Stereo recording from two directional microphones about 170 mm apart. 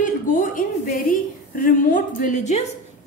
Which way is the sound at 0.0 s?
50° left (ahead or behind).